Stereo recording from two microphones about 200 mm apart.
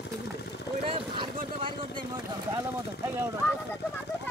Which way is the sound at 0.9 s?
25° right (ahead or behind).